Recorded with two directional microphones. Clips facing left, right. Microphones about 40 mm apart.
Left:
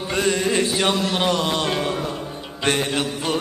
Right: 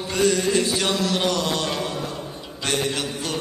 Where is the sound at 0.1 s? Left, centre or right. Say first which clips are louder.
Right 1 dB; left.